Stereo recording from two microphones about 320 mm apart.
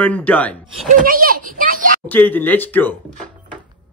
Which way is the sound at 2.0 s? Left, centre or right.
Centre.